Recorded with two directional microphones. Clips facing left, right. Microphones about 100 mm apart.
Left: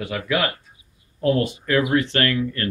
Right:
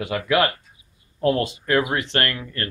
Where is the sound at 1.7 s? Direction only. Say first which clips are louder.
Left 2 dB; 40° right (ahead or behind).